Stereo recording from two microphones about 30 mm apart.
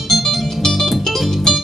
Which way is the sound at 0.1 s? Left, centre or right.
Centre.